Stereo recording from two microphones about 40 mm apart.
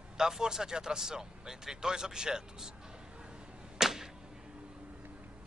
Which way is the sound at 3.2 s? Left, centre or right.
Centre.